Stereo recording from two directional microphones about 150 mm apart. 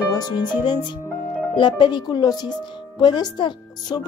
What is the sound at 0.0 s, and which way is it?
Music, 30° left (ahead or behind).